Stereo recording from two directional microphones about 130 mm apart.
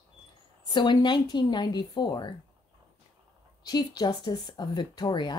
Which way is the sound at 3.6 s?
30° left (ahead or behind).